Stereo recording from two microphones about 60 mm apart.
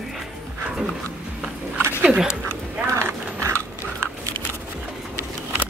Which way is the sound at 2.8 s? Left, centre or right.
Right.